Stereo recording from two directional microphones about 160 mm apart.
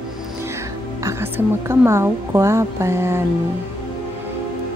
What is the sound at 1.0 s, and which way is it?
A woman's voice, 15° right (ahead or behind).